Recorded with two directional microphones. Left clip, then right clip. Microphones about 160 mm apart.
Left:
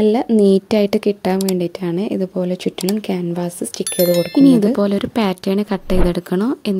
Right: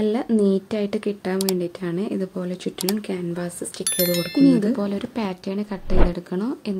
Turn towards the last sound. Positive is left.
turn(degrees=50)  # may be behind; listen again after turning